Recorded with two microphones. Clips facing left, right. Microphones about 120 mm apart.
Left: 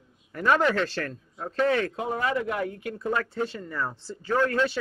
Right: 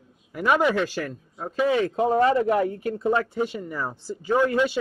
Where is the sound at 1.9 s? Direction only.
30° right (ahead or behind); by 4.8 s 15° right (ahead or behind).